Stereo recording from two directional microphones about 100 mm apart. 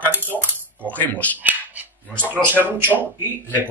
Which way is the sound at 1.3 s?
15° right (ahead or behind).